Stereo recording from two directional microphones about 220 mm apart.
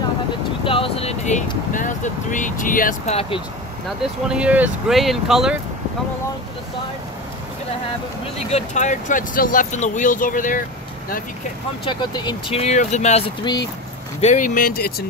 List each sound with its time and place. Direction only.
0.7 s speech: 25° left (ahead or behind)
4.3 s speech: 5° right (ahead or behind)
8.5 s speech: 30° left (ahead or behind)
11.8 s speech: 20° left (ahead or behind); by 15.0 s 40° left (ahead or behind)